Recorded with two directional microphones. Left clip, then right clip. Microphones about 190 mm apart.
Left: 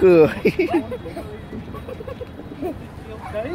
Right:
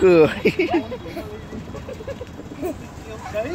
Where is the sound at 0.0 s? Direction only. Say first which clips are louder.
Left 1 dB; 5° left (ahead or behind).